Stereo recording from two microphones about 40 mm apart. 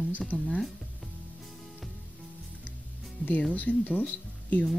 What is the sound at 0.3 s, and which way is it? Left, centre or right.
Speech, left.